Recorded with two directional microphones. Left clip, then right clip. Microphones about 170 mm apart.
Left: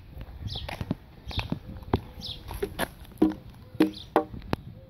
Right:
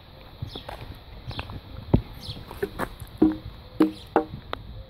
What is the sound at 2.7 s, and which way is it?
Music, 25° left (ahead or behind).